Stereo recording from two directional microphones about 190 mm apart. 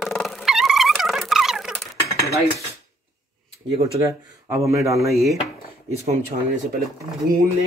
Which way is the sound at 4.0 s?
15° right (ahead or behind).